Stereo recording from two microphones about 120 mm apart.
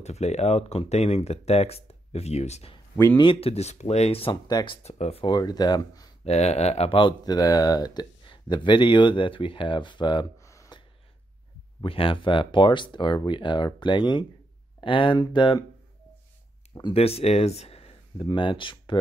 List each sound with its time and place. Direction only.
0.0 s speech: 65° left (ahead or behind)
3.2 s speech: 50° left (ahead or behind)
4.5 s speech: 35° left (ahead or behind)
4.8 s speech: 65° left (ahead or behind)
5.2 s speech: 35° left (ahead or behind)
6.2 s speech: 65° left (ahead or behind); by 10.2 s 40° left (ahead or behind)
10.4 s a sound: 25° left (ahead or behind)
11.8 s speech: 50° left (ahead or behind)
16.9 s speech: 55° left (ahead or behind)
18.2 s speech: 45° left (ahead or behind)